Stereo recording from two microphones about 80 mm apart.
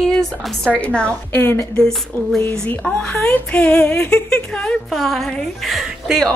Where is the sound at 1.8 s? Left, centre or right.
Centre.